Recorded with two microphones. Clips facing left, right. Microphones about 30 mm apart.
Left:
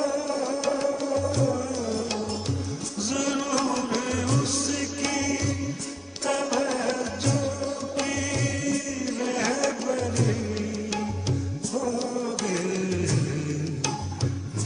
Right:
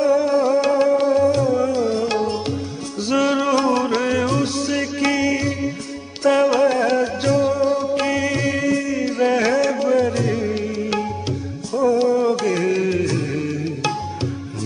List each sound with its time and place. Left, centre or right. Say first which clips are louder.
0.0 s music: right 10 dB; right